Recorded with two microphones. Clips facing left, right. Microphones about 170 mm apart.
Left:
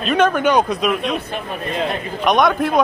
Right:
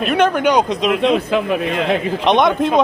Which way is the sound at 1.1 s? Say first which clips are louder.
Right 8 dB; 90° right.